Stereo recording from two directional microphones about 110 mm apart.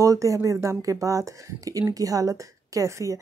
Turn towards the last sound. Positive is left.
turn(degrees=-30)  # may be behind; listen again after turning